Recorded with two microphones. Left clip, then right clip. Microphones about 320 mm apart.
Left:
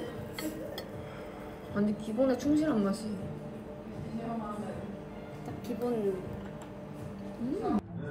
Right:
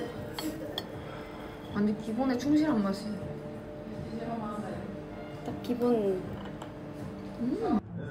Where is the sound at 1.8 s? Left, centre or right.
Centre.